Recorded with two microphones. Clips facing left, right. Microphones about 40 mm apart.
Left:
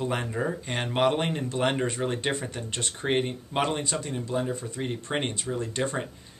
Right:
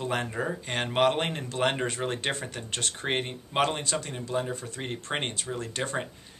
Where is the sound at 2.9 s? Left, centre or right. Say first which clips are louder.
Left 5 dB; centre.